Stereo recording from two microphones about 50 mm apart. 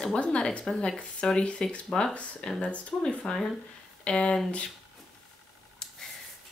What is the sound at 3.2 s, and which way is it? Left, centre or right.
Speech, centre.